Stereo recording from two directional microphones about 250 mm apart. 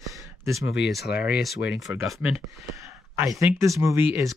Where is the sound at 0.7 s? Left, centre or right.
Left.